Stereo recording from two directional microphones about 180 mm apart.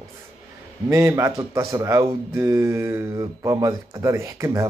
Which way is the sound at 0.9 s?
15° right (ahead or behind).